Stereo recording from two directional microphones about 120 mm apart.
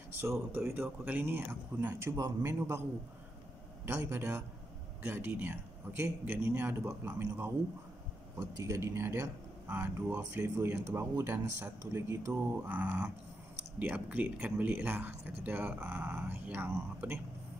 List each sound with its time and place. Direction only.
0.2 s speech: 20° right (ahead or behind)
3.8 s a man's voice: 20° right (ahead or behind)
8.5 s a man's voice: 25° right (ahead or behind)